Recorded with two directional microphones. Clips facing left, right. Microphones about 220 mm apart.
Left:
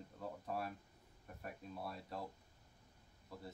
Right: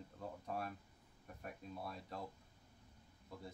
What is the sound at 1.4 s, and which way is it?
Speech, centre (ahead or behind).